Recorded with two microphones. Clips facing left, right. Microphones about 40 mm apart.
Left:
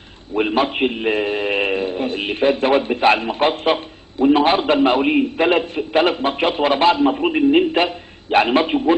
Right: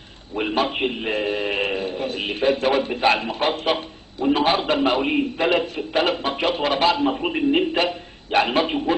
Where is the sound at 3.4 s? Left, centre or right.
Left.